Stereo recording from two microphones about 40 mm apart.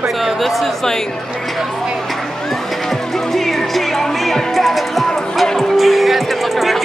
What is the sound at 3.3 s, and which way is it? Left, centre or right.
Music, centre.